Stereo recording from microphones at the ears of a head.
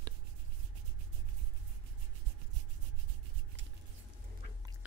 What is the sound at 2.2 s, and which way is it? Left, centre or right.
Rub, right.